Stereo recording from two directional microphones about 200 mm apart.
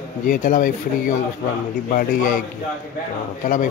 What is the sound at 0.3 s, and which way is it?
Speech, 40° left (ahead or behind).